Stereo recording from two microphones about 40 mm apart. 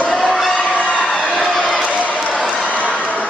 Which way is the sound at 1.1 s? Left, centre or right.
Left.